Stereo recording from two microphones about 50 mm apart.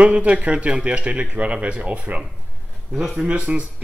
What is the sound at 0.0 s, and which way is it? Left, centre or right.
Speech, right.